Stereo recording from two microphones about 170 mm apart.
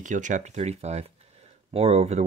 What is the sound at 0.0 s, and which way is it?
Speech, 45° right (ahead or behind).